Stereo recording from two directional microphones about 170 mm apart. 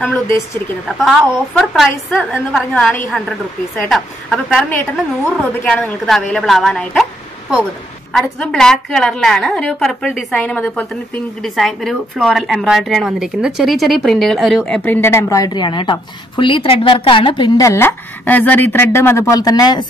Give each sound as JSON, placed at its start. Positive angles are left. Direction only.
{"t": 0.8, "sound": "a woman's voice", "side_deg": 0}
{"t": 8.1, "sound": "a woman's voice", "side_deg": 5}
{"t": 15.0, "sound": "a woman's voice", "side_deg": 15}